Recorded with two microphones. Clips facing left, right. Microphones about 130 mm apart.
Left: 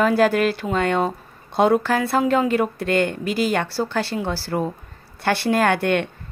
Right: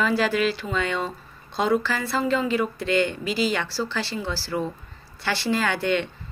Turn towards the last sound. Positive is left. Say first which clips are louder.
# left 5 dB
turn(degrees=55)  # may be behind; listen again after turning